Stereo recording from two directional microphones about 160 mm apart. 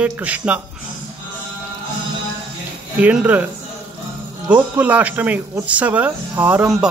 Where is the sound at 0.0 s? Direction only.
10° right (ahead or behind).